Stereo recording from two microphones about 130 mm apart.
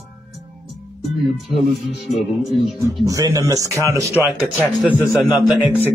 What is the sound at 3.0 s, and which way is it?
A man's voice, 25° right (ahead or behind).